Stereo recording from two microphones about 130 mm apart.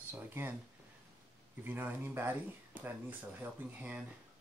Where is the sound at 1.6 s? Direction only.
15° right (ahead or behind).